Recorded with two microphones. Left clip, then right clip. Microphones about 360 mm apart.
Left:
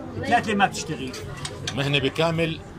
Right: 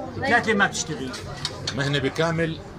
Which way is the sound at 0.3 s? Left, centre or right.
Centre.